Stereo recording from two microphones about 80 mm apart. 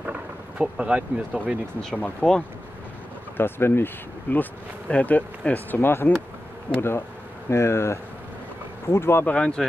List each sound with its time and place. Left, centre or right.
0.0 s speech: centre
2.0 s speech: centre
3.3 s speech: left
7.4 s speech: left
9.2 s speech: centre